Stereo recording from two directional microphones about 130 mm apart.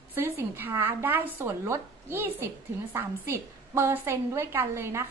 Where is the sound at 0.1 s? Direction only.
20° right (ahead or behind).